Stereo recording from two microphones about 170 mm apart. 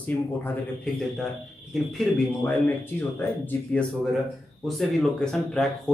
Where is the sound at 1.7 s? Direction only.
Centre (ahead or behind).